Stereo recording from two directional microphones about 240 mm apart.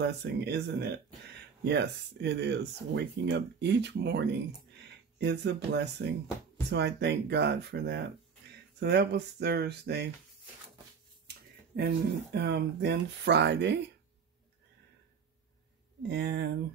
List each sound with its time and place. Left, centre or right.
0.0 s speech: right
11.7 s speech: right
16.0 s speech: right